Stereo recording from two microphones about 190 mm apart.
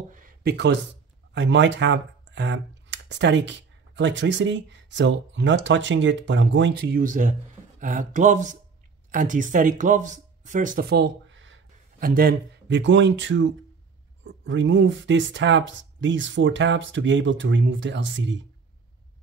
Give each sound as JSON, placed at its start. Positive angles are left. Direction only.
{"t": 0.1, "sound": "speech", "side_deg": -50}
{"t": 1.3, "sound": "speech", "side_deg": -75}
{"t": 7.0, "sound": "speech", "side_deg": -45}
{"t": 12.0, "sound": "speech", "side_deg": -50}